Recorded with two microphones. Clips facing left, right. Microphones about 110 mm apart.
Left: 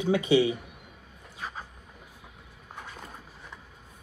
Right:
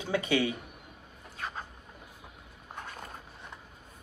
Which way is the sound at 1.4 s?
5° left (ahead or behind).